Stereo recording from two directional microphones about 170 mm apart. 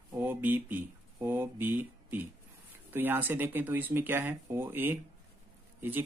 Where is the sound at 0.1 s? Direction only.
10° right (ahead or behind).